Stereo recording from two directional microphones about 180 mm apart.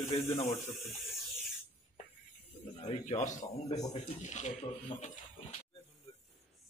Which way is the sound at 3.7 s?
20° left (ahead or behind).